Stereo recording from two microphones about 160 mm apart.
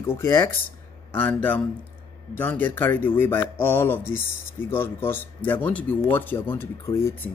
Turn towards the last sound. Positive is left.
turn(degrees=20)  # may be behind; listen again after turning